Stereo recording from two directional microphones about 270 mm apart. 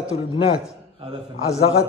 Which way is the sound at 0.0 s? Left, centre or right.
Centre.